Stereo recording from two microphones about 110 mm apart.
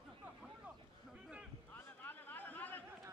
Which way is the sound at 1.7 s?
15° left (ahead or behind).